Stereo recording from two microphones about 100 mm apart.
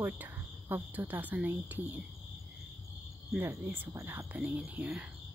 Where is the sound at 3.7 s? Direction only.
20° right (ahead or behind).